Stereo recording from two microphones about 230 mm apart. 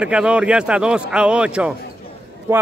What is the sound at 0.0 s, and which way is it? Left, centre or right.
A man's voice, centre.